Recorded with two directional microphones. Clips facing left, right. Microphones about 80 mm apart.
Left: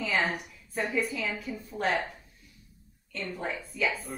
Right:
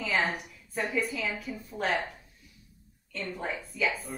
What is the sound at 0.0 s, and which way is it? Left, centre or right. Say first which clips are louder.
A woman's voice: even; centre.